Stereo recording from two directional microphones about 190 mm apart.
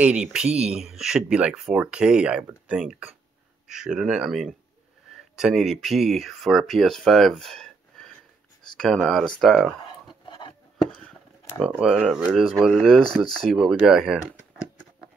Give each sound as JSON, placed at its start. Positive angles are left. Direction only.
{"t": 0.0, "sound": "speech", "side_deg": -5}
{"t": 10.2, "sound": "a sound", "side_deg": 25}
{"t": 10.8, "sound": "speech", "side_deg": 0}